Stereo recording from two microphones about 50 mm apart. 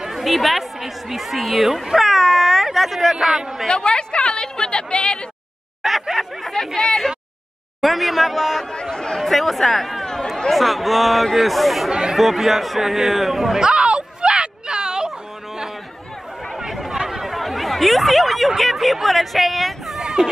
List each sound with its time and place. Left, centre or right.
0.0 s speech: centre
3.6 s a sound: centre
5.8 s a sound: centre
7.8 s speech: centre
8.8 s speech: centre
9.2 s speech: centre
11.9 s speech: centre
12.2 s speech: centre
13.6 s a sound: centre
16.5 s chatter: centre
17.0 s a sound: centre
18.6 s speech: centre